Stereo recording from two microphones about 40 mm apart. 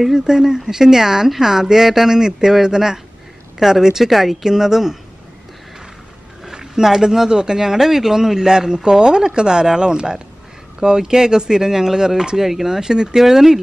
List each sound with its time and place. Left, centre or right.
0.1 s speech: centre
6.4 s speech: centre